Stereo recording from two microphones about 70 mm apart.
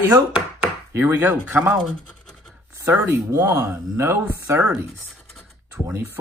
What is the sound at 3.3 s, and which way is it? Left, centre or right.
Speech, right.